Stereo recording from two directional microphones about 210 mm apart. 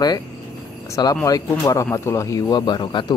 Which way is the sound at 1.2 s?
15° left (ahead or behind).